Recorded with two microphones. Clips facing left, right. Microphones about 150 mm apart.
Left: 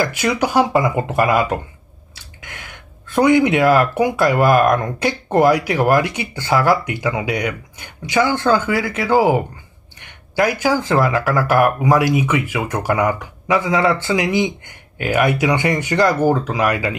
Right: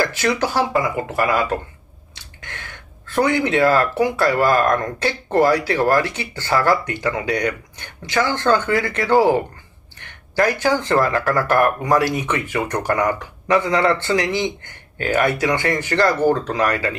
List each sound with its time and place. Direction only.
0.0 s speech: 15° left (ahead or behind)